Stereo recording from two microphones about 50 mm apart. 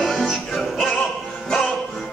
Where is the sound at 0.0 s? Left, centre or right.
Centre.